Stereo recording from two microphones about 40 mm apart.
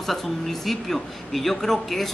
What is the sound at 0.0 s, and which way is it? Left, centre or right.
A woman's voice, centre.